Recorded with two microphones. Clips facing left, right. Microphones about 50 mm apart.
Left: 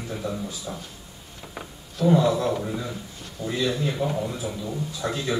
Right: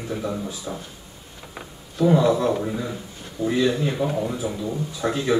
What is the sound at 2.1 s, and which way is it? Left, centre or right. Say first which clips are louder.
A man's voice: right 2 dB; centre.